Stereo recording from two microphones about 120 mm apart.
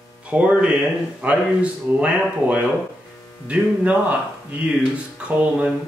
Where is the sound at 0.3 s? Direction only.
10° right (ahead or behind).